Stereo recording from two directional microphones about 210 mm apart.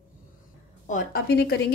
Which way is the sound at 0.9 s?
50° left (ahead or behind).